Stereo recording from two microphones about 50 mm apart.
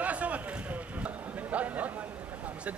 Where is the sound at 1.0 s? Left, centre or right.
Right.